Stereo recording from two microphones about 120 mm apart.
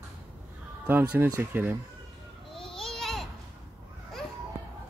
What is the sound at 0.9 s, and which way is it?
Speech, 15° right (ahead or behind).